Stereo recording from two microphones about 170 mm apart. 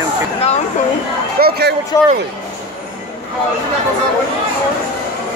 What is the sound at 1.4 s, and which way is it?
Speech, 70° right (ahead or behind).